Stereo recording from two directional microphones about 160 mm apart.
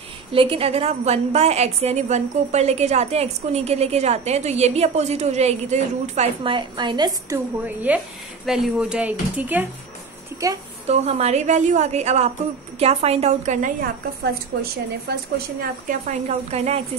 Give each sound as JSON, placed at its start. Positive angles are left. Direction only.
{"t": 0.3, "sound": "a woman's voice", "side_deg": -35}
{"t": 6.4, "sound": "a woman's voice", "side_deg": -30}
{"t": 7.6, "sound": "speech", "side_deg": -10}
{"t": 10.9, "sound": "a woman's voice", "side_deg": -40}
{"t": 14.6, "sound": "a woman's voice", "side_deg": -75}
{"t": 16.1, "sound": "a woman's voice", "side_deg": -45}